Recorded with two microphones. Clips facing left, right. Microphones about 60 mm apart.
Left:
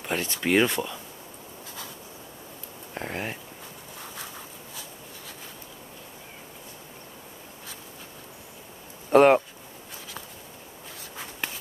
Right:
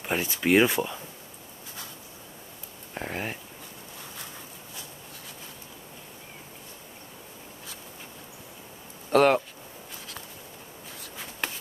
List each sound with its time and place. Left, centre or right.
0.0 s speech: centre
2.9 s speech: centre
9.1 s speech: left